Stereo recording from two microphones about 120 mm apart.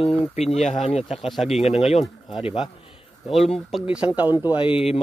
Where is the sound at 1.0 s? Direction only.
Centre (ahead or behind).